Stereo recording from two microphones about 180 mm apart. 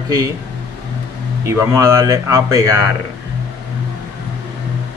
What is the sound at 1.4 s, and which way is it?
Speech, 15° right (ahead or behind).